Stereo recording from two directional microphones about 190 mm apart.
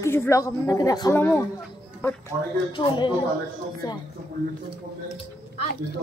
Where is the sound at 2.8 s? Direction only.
25° left (ahead or behind).